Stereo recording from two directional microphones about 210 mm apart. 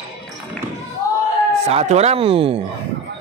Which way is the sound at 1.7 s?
30° right (ahead or behind).